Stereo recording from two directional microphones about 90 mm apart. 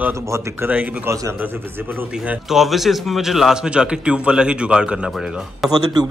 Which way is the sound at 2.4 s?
Centre (ahead or behind).